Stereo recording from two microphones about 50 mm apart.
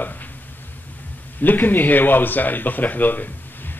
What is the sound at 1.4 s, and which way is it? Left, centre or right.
A man's voice, left.